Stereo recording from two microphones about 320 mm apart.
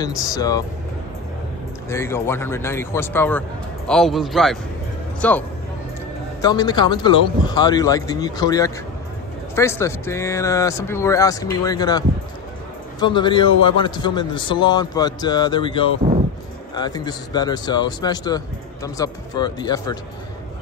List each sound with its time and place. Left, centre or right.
0.0 s speech: centre
1.9 s speech: centre
6.4 s speech: centre
13.0 s speech: centre